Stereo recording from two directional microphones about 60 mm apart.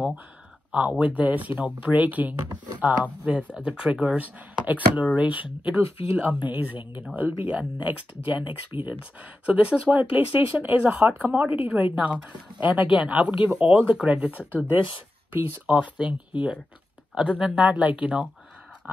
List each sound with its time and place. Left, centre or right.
0.7 s speech: right
9.5 s speech: right
15.6 s speech: centre